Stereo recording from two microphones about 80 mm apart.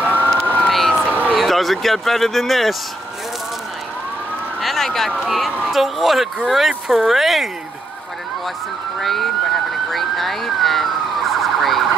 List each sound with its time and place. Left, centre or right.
0.0 s emergency vehicle: right
0.4 s emergency vehicle: centre
0.7 s emergency vehicle: centre
1.3 s speech: centre
4.6 s a sound: centre
5.2 s speech: centre
9.0 s emergency vehicle: centre